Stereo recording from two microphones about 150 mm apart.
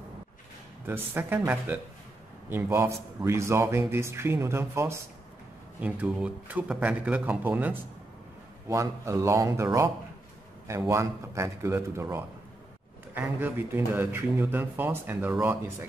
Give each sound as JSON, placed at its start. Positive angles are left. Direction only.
{"t": 0.8, "sound": "speech", "side_deg": -15}
{"t": 10.9, "sound": "speech", "side_deg": -20}